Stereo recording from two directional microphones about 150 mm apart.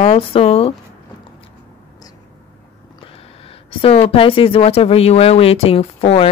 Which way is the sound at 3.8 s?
40° left (ahead or behind).